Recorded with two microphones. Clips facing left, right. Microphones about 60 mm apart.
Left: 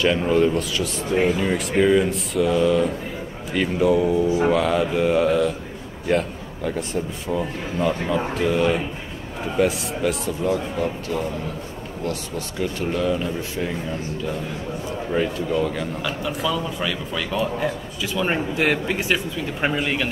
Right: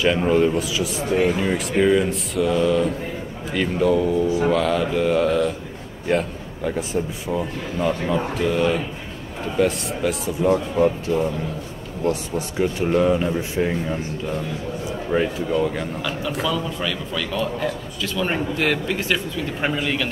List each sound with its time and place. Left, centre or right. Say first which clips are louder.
0.0 s a man's voice: right 1 dB; centre
10.4 s speech: right 6 dB; right; by 15.9 s centre
16.0 s a man's voice: right 1 dB; centre